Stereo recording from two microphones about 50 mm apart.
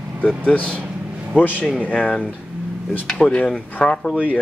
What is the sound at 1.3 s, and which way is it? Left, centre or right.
Speech, left.